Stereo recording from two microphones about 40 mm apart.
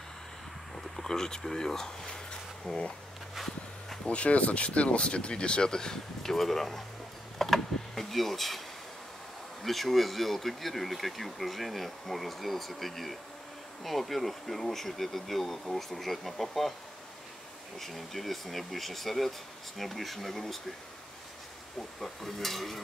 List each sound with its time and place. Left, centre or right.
0.7 s speech: centre
4.0 s speech: left; by 6.8 s centre
7.3 s a sound: centre
9.6 s speech: centre
17.7 s speech: centre
21.7 s speech: centre